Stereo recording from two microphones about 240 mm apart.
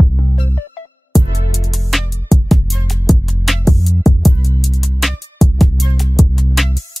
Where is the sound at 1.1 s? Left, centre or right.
Centre.